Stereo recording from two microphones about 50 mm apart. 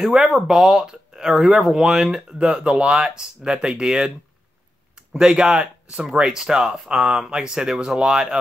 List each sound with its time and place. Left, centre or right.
0.0 s speech: centre